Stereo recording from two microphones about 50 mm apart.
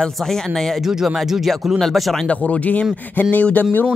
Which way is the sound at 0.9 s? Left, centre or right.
Centre.